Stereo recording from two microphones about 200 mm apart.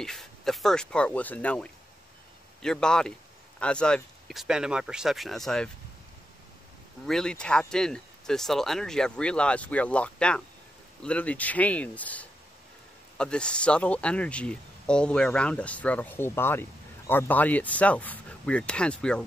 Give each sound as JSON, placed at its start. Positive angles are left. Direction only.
{"t": 0.0, "sound": "speech", "side_deg": 0}
{"t": 7.1, "sound": "speech", "side_deg": 5}